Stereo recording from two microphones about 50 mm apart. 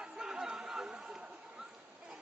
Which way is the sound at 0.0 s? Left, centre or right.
Centre.